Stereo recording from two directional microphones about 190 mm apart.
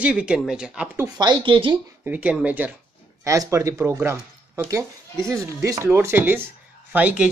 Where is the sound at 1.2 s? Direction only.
20° right (ahead or behind).